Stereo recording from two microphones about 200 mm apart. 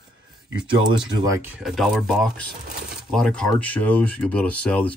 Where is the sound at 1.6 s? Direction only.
Centre (ahead or behind).